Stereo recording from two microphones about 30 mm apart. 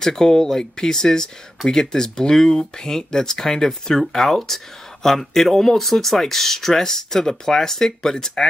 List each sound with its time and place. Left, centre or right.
0.0 s speech: centre